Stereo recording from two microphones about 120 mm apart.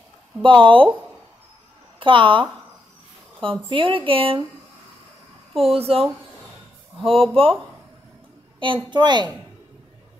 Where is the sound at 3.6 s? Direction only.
45° right (ahead or behind).